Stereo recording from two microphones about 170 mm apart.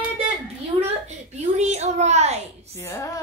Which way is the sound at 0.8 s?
40° right (ahead or behind).